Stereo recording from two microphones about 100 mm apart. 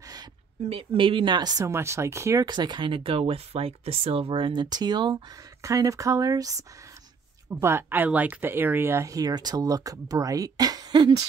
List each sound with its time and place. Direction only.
0.0 s a sound: 40° right (ahead or behind)
0.7 s speech: 65° right (ahead or behind); by 1.7 s 40° right (ahead or behind)
1.7 s speech: 25° right (ahead or behind)
2.4 s speech: 45° right (ahead or behind)
7.6 s speech: 20° right (ahead or behind); by 11.2 s 50° right (ahead or behind)